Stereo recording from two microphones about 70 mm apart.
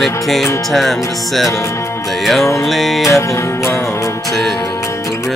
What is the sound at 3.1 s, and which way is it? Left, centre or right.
Music, left.